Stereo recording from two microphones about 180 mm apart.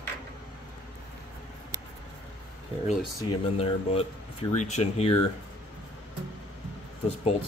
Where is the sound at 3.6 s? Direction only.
35° left (ahead or behind).